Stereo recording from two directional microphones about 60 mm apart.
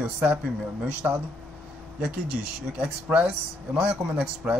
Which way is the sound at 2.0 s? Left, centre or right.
Centre.